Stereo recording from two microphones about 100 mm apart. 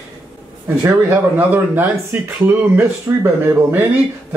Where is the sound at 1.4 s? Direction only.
20° right (ahead or behind).